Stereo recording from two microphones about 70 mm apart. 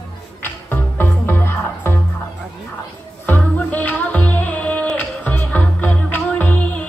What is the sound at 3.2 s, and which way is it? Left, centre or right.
Music, left.